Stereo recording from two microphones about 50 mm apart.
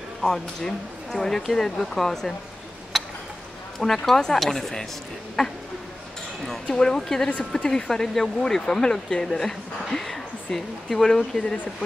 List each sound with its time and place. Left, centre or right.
0.2 s speech: centre
2.9 s tick-tock: centre
3.8 s speech: centre